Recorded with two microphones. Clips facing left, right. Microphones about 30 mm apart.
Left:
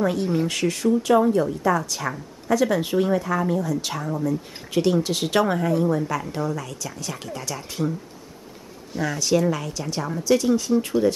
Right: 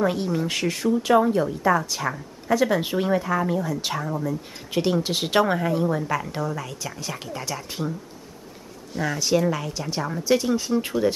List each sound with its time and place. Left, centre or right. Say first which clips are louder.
0.0 s speech: left 1 dB; centre
8.9 s speech: left 1 dB; centre